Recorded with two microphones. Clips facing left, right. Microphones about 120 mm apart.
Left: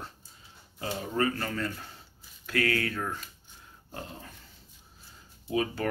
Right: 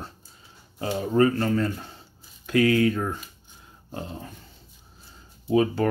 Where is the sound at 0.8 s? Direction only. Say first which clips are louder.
Right 8 dB; 30° right (ahead or behind).